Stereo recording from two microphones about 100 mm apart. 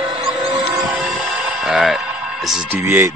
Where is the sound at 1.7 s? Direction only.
5° right (ahead or behind).